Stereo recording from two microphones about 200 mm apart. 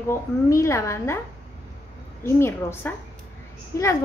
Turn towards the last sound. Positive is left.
turn(degrees=15)  # may be behind; listen again after turning